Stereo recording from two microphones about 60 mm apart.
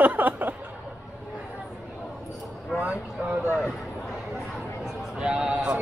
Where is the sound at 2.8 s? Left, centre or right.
Right.